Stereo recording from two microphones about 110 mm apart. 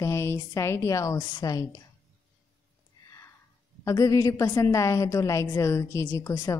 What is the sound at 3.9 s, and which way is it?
A woman's voice, 30° left (ahead or behind).